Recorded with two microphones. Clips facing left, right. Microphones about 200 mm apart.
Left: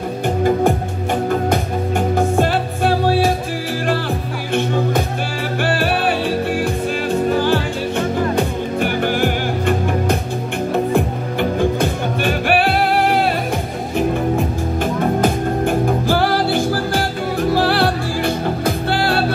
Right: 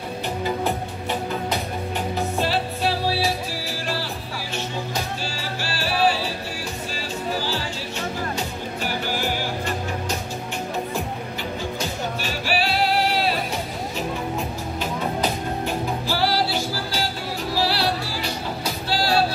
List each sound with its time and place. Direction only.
1.3 s music: 50° left (ahead or behind)
4.6 s music: 55° left (ahead or behind)